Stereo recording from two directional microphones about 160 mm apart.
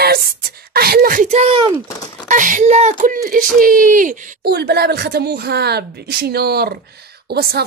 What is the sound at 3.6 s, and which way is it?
Speech, 60° right (ahead or behind).